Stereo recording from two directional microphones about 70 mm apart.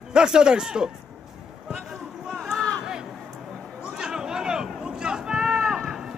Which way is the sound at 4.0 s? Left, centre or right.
Centre.